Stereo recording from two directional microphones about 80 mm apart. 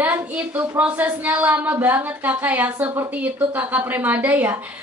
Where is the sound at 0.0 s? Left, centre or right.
Centre.